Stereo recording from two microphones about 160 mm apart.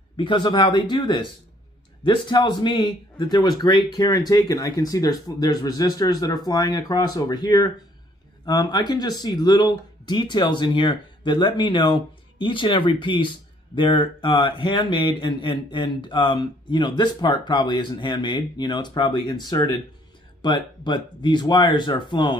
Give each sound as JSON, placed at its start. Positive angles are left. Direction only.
{"t": 0.2, "sound": "speech", "side_deg": 30}